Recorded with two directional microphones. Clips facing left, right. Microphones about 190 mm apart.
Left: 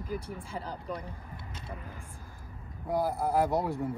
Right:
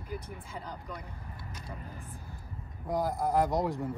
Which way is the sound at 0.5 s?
30° left (ahead or behind).